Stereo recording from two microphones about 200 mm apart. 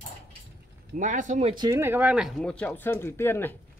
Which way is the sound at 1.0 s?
40° right (ahead or behind).